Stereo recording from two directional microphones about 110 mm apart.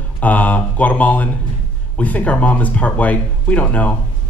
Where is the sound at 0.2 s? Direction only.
15° left (ahead or behind).